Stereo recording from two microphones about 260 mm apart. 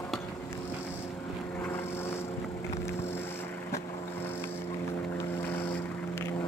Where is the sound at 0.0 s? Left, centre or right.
Centre.